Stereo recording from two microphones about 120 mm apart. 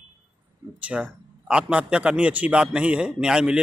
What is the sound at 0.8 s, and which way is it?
A man's voice, 10° right (ahead or behind).